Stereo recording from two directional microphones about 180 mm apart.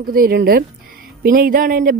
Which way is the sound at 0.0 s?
55° right (ahead or behind).